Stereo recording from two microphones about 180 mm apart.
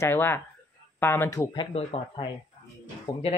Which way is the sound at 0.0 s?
10° left (ahead or behind).